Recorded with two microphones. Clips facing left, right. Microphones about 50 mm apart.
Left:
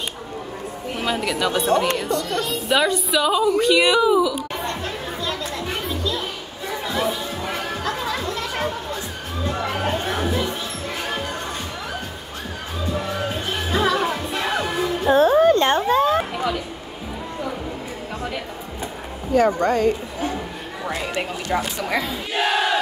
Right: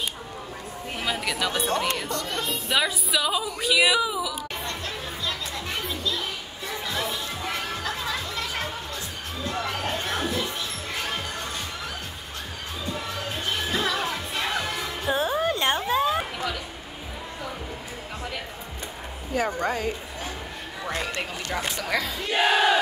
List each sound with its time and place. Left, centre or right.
0.9 s speech: centre
5.9 s music: centre
13.9 s music: centre
15.1 s a sound: centre
19.3 s speech: centre
20.9 s speech: centre
22.3 s crowd: centre